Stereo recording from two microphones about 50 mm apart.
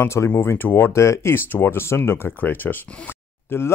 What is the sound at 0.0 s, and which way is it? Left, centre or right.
Speech, left.